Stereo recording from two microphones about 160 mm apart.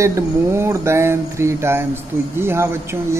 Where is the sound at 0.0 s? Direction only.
15° right (ahead or behind).